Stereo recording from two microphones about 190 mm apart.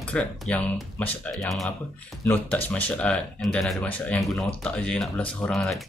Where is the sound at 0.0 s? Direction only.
5° left (ahead or behind).